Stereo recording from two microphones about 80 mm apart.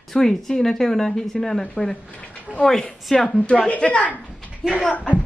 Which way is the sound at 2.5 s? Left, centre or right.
Centre.